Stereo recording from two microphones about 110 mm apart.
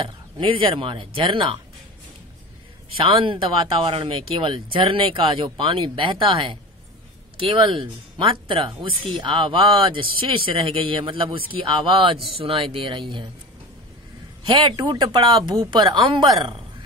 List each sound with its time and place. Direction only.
0.0 s speech: 50° right (ahead or behind)
3.0 s speech: 55° right (ahead or behind)
14.4 s speech: 50° right (ahead or behind)